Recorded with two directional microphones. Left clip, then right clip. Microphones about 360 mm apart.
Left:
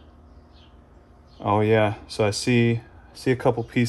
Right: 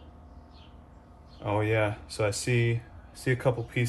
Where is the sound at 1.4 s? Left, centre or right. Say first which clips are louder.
Left 7 dB; left.